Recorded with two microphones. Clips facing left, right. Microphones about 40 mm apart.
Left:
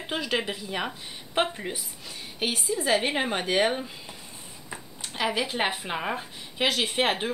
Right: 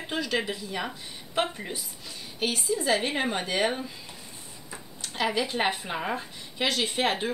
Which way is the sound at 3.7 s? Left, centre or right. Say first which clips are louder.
Left 1 dB; centre.